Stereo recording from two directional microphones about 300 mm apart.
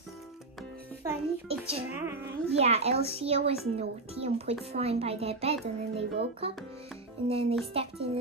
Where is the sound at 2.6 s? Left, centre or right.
Right.